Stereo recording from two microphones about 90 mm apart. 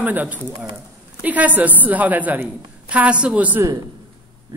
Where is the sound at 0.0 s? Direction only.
20° right (ahead or behind).